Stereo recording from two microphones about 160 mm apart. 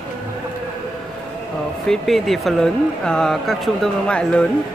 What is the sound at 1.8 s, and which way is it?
Speech, centre (ahead or behind).